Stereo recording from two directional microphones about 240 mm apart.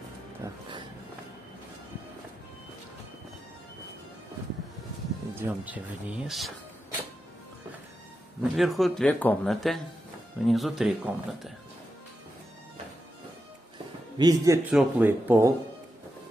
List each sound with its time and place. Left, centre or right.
0.4 s a sound: centre
5.3 s speech: centre
8.4 s speech: centre
14.1 s speech: centre